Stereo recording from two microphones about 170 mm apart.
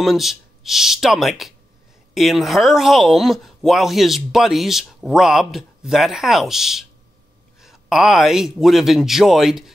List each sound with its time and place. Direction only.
0.0 s speech: centre (ahead or behind)